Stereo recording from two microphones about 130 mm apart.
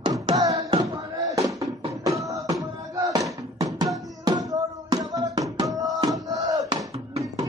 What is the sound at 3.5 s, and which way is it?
Music, 30° right (ahead or behind).